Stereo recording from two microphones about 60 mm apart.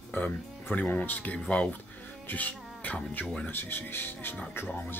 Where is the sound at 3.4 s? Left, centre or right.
Left.